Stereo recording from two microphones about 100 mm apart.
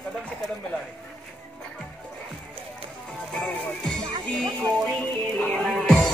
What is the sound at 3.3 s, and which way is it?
Music, 10° left (ahead or behind).